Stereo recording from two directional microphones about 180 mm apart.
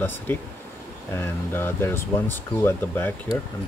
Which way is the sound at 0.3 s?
10° left (ahead or behind).